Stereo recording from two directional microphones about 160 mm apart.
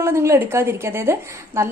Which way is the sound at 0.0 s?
15° right (ahead or behind).